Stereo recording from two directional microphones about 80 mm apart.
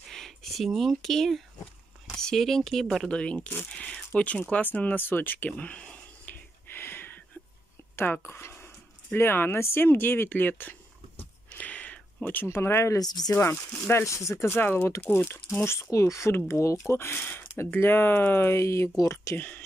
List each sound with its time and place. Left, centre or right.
0.1 s speech: centre
3.1 s speech: centre
5.5 s a sound: centre
12.4 s speech: left
13.0 s speech: left
13.4 s speech: left
19.3 s speech: left